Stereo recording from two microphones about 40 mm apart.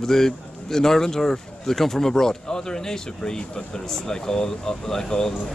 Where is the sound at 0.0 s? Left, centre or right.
Centre.